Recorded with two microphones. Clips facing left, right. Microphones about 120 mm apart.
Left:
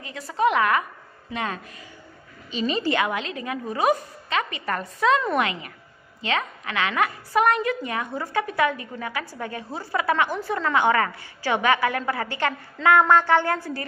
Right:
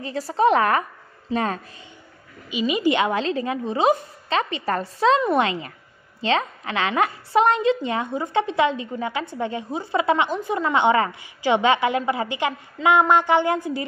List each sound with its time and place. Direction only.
0.0 s a woman's voice: 35° right (ahead or behind)
2.5 s a woman's voice: 10° right (ahead or behind)